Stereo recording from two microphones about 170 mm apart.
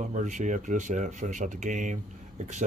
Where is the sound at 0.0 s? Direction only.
45° right (ahead or behind).